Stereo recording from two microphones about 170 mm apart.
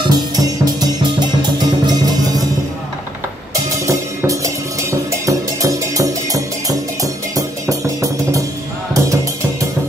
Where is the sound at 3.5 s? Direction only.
20° right (ahead or behind).